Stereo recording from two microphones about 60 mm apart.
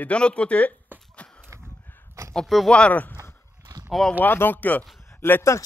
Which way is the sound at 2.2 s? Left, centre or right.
Right.